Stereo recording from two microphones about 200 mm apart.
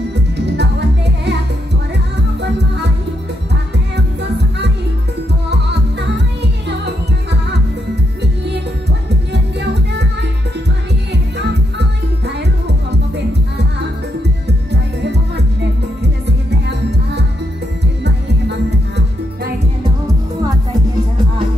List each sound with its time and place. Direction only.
0.6 s music: 60° right (ahead or behind)
9.3 s music: 60° right (ahead or behind)
14.7 s music: 60° right (ahead or behind)
16.4 s music: 60° right (ahead or behind)